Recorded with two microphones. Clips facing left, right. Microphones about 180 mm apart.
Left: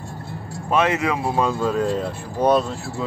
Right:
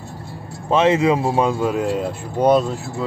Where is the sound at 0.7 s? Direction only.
25° right (ahead or behind).